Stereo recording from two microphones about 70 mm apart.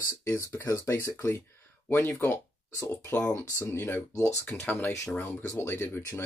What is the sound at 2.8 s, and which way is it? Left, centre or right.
Speech, left.